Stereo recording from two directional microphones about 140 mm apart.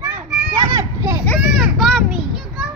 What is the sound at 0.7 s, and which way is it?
Children playing, 25° right (ahead or behind).